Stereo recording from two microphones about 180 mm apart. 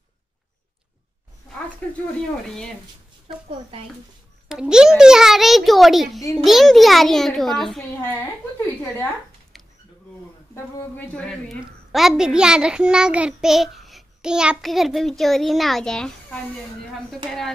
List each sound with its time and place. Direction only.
2.4 s a child's voice: 5° left (ahead or behind)
4.5 s a child's voice: 5° right (ahead or behind)
9.5 s a sound: centre (ahead or behind)
10.5 s a child's voice: 10° left (ahead or behind)